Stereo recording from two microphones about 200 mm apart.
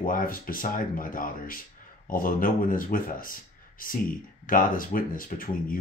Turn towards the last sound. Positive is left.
turn(degrees=45)  # may be behind; listen again after turning